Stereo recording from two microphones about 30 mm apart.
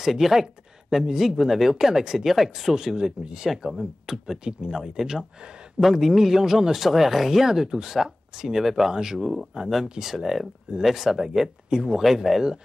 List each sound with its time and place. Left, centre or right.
0.0 s speech: centre
5.4 s a sound: right
5.8 s speech: centre
8.6 s speech: centre; by 9.7 s right
10.0 s speech: centre